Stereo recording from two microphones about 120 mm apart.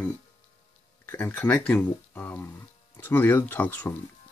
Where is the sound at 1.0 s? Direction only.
15° left (ahead or behind).